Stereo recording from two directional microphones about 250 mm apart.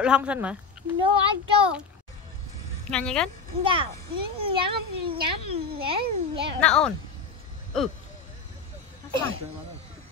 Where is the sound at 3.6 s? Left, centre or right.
Right.